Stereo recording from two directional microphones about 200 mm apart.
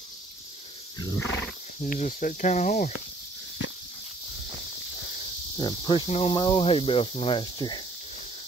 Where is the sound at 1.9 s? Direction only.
40° left (ahead or behind).